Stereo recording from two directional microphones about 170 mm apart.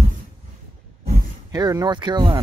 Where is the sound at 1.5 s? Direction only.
20° right (ahead or behind).